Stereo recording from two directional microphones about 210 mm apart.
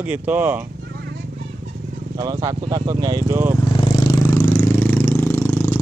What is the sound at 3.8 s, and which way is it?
Vehicle, 15° left (ahead or behind).